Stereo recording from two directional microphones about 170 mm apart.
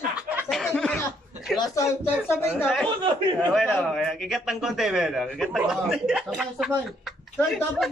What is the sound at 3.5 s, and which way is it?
A man's voice, centre (ahead or behind).